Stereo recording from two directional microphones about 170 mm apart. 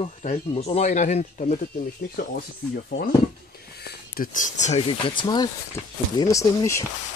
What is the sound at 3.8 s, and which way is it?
Speech, 55° left (ahead or behind).